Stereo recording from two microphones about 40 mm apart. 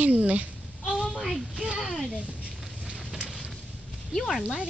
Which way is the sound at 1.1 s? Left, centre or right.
Centre.